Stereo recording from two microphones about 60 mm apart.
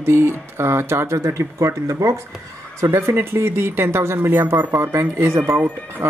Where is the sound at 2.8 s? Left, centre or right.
Right.